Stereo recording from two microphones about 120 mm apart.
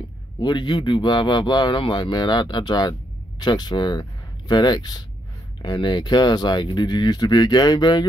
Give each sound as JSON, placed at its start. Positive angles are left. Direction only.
{"t": 0.4, "sound": "speech", "side_deg": 40}